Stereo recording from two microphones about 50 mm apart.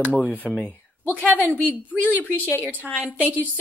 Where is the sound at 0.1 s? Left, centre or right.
Left.